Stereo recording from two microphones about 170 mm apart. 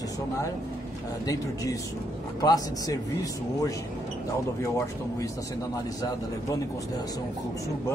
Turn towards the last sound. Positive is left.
turn(degrees=20)  # may be behind; listen again after turning